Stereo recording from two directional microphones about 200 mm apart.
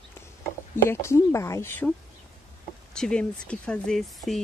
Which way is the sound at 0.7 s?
15° left (ahead or behind).